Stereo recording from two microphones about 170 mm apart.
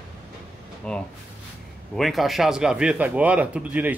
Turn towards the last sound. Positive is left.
turn(degrees=-10)  # may be behind; listen again after turning